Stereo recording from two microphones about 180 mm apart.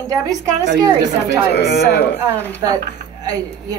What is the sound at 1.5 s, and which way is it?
Speech, 70° left (ahead or behind).